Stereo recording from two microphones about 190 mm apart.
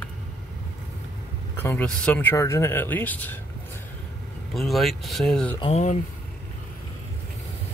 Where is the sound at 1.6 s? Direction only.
10° left (ahead or behind).